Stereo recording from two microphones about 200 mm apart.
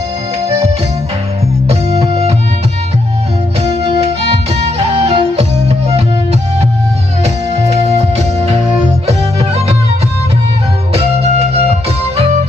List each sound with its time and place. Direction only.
3.6 s music: 30° right (ahead or behind)
7.7 s music: 35° right (ahead or behind)
10.9 s music: 30° right (ahead or behind)